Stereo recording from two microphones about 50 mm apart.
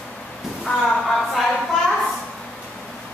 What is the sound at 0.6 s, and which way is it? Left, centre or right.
Speech, centre.